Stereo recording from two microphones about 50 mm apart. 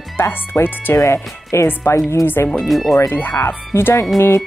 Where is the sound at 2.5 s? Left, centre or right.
Centre.